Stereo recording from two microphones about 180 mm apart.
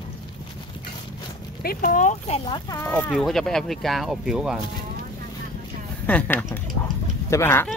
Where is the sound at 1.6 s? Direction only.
55° left (ahead or behind); by 2.8 s 30° left (ahead or behind).